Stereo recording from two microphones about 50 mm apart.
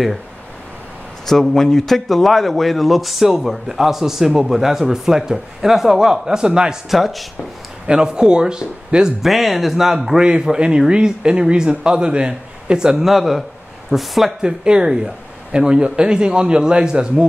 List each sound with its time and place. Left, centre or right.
1.2 s speech: centre
6.9 s speech: centre
7.8 s speech: centre
9.2 s speech: centre
14.4 s speech: centre